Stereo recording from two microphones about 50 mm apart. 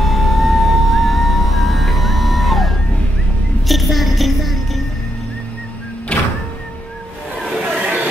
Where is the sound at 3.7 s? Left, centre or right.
Centre.